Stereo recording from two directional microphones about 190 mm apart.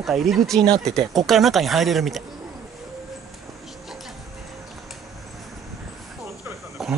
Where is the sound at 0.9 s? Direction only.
Centre (ahead or behind).